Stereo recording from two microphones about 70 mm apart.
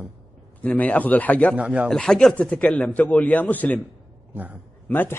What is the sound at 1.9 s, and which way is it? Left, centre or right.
A man's voice, centre.